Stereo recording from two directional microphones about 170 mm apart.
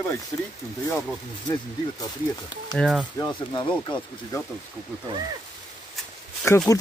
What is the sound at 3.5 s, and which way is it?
Speech, 30° left (ahead or behind).